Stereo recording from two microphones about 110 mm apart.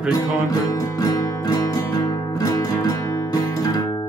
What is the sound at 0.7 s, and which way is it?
Music, 35° left (ahead or behind).